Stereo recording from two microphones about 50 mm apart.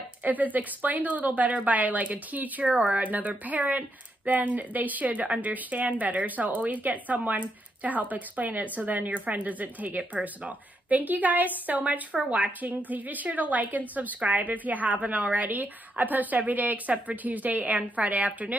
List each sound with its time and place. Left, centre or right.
0.2 s a woman's voice: right